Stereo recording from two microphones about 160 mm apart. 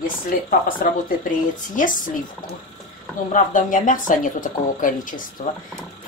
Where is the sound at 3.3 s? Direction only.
55° left (ahead or behind).